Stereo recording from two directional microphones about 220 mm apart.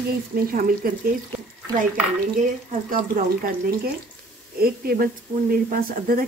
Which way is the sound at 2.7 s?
40° right (ahead or behind).